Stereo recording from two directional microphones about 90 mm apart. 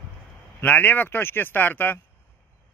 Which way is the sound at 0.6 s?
20° left (ahead or behind).